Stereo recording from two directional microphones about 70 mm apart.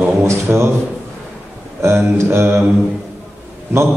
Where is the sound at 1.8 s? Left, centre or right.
Right.